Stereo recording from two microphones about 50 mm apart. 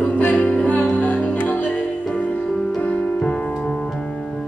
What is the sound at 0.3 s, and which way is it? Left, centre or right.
Music, left.